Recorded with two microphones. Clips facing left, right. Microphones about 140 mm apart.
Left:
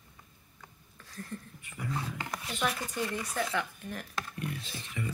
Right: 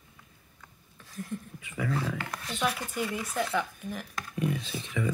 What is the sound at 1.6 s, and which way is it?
Speech, 90° right.